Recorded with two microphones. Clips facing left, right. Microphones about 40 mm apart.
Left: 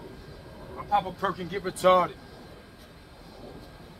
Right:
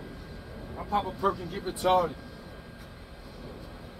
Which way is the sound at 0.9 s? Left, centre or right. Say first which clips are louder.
Left 1 dB; left.